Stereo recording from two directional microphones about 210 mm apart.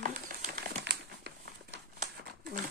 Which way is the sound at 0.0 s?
40° right (ahead or behind).